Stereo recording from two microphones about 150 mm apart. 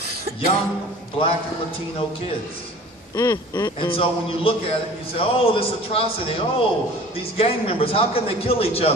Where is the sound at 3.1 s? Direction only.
25° left (ahead or behind).